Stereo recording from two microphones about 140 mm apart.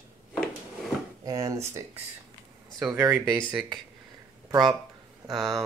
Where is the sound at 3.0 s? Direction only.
20° right (ahead or behind).